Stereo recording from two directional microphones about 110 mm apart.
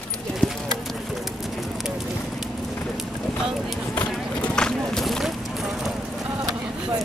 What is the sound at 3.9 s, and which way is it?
Run, 10° left (ahead or behind).